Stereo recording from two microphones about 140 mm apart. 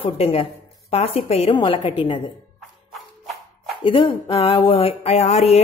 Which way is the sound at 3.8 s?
35° left (ahead or behind).